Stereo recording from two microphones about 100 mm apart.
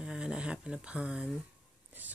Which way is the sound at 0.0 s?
5° right (ahead or behind).